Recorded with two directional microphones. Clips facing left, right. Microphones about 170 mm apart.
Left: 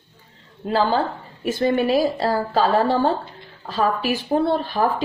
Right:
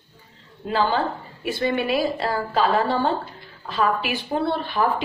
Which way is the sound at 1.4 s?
40° left (ahead or behind).